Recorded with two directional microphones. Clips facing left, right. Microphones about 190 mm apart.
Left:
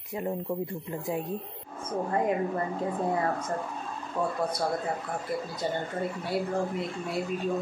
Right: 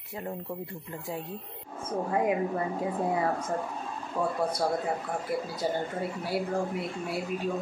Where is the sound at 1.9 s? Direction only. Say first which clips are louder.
Even; 5° right (ahead or behind).